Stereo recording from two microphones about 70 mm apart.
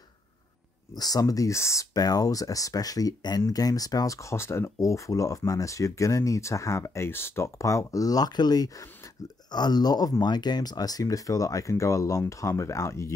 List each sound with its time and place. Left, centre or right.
0.9 s speech: left
2.0 s speech: left
3.4 s speech: left
9.5 s speech: left
10.2 s speech: left